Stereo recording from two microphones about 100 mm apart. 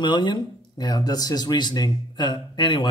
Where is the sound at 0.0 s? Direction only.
50° left (ahead or behind).